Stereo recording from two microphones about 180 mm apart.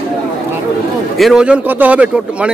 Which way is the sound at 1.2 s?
5° right (ahead or behind).